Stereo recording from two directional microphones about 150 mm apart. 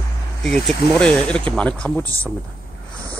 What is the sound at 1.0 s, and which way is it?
Speech, 5° left (ahead or behind).